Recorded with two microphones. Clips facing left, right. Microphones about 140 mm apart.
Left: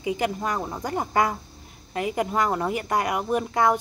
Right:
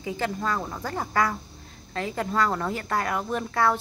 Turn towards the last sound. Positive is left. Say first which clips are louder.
# left 3 dB
turn(degrees=15)  # may be behind; listen again after turning